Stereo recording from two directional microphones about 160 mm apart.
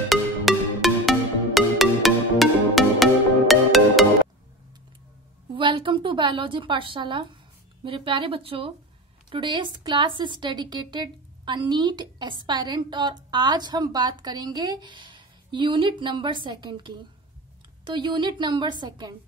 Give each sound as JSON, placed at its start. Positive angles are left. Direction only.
{"t": 0.1, "sound": "music", "side_deg": 0}
{"t": 5.5, "sound": "a woman's voice", "side_deg": -30}